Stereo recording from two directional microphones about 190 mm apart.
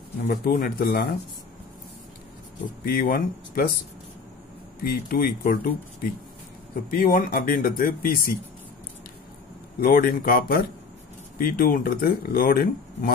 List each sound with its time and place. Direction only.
0.2 s speech: 50° left (ahead or behind)
2.8 s speech: 50° left (ahead or behind)
4.8 s speech: 55° left (ahead or behind)
6.7 s speech: 50° left (ahead or behind)
9.8 s speech: 45° left (ahead or behind)